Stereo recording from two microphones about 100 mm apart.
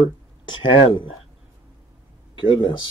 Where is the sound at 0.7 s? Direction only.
55° left (ahead or behind).